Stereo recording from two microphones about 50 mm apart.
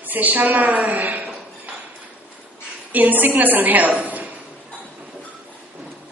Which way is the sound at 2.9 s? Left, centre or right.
Right.